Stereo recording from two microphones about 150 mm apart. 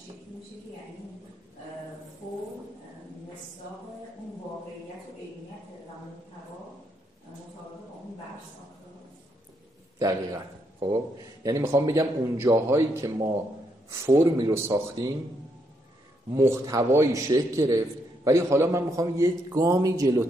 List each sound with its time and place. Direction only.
9.9 s a man's voice: 25° right (ahead or behind)
16.3 s a man's voice: 20° right (ahead or behind)